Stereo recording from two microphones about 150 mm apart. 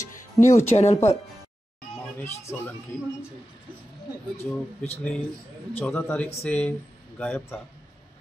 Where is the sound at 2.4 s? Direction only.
10° left (ahead or behind).